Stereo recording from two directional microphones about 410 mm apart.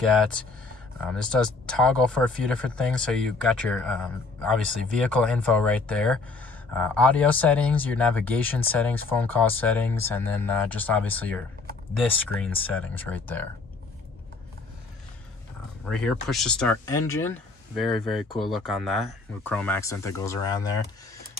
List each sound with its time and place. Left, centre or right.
1.0 s speech: centre
15.9 s speech: centre